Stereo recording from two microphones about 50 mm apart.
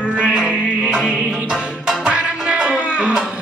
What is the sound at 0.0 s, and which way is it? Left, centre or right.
Music, right.